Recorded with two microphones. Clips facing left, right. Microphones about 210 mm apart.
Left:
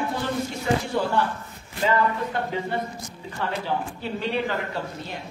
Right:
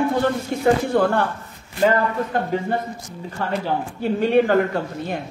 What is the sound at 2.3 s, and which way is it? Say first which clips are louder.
A woman's voice: right 5 dB; 45° right (ahead or behind).